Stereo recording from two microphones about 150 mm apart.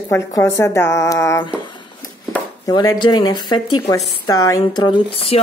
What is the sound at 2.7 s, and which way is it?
Speech, 30° left (ahead or behind).